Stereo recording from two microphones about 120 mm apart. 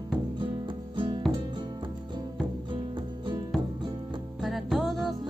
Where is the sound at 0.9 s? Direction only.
45° right (ahead or behind).